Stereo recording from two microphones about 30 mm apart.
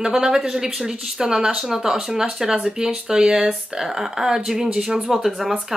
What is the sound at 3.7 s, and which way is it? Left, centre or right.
Speech, centre.